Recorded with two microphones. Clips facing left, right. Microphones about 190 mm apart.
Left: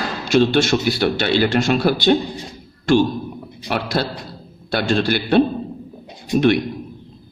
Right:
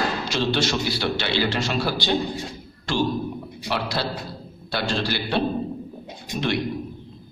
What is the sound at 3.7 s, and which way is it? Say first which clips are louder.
A man's voice: left 4 dB; 50° left (ahead or behind).